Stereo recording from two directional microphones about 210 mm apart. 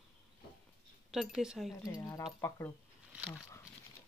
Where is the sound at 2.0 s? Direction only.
15° left (ahead or behind).